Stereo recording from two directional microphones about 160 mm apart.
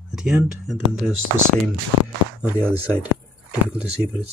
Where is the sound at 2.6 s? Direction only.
10° right (ahead or behind).